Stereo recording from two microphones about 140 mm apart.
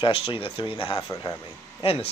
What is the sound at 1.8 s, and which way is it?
Speech, 45° left (ahead or behind).